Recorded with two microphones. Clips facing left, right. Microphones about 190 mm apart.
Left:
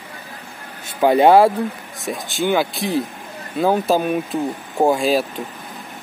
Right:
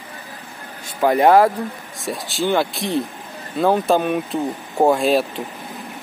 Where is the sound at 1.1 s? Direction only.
25° left (ahead or behind).